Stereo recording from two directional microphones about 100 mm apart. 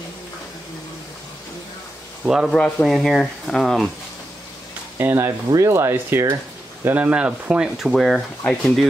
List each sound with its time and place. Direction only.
2.2 s speech: 5° right (ahead or behind)
2.5 s speech: 5° left (ahead or behind)
4.9 s speech: 25° right (ahead or behind); by 8.5 s centre (ahead or behind)